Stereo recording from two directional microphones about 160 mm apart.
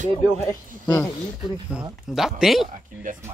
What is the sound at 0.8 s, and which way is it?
Speech, 15° left (ahead or behind).